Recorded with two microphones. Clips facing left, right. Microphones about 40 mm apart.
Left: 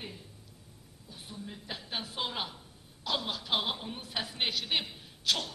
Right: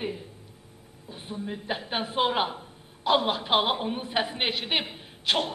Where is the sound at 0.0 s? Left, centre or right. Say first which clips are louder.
Right 12 dB; right.